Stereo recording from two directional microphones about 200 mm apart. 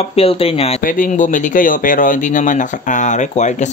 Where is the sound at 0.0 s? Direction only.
30° left (ahead or behind).